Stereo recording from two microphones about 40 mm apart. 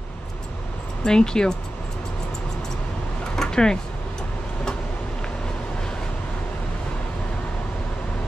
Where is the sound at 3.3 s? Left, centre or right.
Centre.